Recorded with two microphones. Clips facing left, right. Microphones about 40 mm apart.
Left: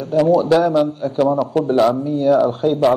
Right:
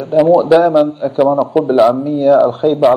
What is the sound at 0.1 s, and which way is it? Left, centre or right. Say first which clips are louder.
A man's voice: right 5 dB; centre.